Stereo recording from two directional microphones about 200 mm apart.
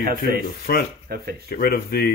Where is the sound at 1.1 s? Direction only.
50° right (ahead or behind).